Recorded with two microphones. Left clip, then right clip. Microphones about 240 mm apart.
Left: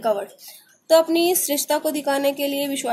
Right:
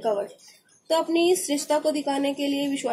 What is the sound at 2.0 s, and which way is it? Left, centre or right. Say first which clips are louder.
Speech: left 5 dB; left.